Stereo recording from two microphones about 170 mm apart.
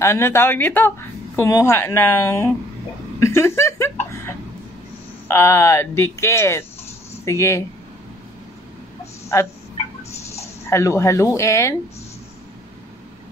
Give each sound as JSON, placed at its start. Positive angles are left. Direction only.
{"t": 0.0, "sound": "speech", "side_deg": 15}
{"t": 3.2, "sound": "chuckle", "side_deg": 15}
{"t": 5.3, "sound": "speech", "side_deg": 15}
{"t": 10.3, "sound": "speech", "side_deg": 15}